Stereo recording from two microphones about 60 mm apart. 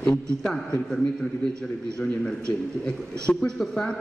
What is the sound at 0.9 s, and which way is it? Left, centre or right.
A man's voice, centre.